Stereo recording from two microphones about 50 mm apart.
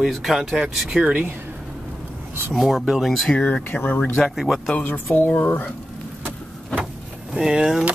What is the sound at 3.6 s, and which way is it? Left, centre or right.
Speech, left.